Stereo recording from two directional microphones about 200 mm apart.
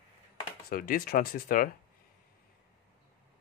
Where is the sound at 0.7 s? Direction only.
45° left (ahead or behind).